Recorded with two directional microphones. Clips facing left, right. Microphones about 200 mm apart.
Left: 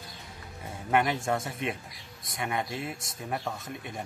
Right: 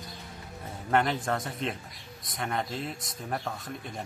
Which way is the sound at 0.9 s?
10° left (ahead or behind).